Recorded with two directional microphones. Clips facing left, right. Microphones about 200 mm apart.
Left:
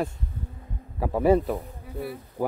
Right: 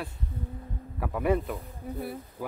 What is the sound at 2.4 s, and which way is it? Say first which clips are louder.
Speech: left 9 dB; 45° left (ahead or behind).